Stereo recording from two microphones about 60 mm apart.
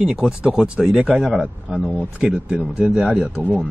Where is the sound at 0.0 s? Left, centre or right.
Centre.